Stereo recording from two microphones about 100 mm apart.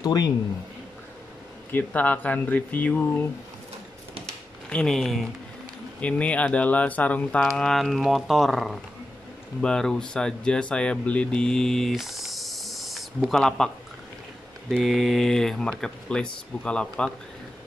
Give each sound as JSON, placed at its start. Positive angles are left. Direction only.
{"t": 0.0, "sound": "speech", "side_deg": 40}
{"t": 1.7, "sound": "speech", "side_deg": 20}
{"t": 4.6, "sound": "speech", "side_deg": 5}
{"t": 5.9, "sound": "speech", "side_deg": 15}
{"t": 7.4, "sound": "speech", "side_deg": 5}
{"t": 14.8, "sound": "speech", "side_deg": 0}